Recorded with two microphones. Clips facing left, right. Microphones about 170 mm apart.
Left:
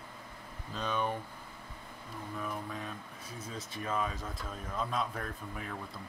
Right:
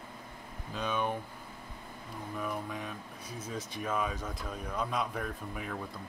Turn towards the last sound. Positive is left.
turn(degrees=-5)  # may be behind; listen again after turning